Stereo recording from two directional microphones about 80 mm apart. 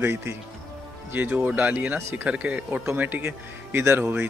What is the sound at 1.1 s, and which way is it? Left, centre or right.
Speech, centre.